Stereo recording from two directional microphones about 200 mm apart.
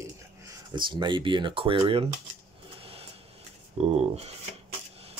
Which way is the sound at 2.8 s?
30° right (ahead or behind).